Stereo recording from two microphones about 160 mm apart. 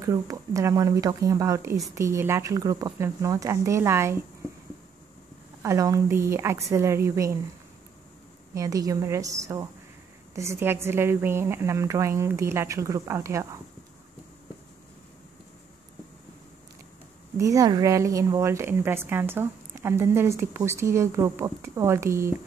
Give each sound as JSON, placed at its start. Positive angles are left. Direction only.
{"t": 0.0, "sound": "speech", "side_deg": -20}
{"t": 5.6, "sound": "a woman's voice", "side_deg": -20}
{"t": 8.5, "sound": "a woman's voice", "side_deg": -20}
{"t": 17.4, "sound": "a woman's voice", "side_deg": -20}